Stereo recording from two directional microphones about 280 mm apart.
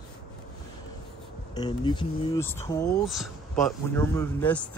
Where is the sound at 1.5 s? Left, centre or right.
Centre.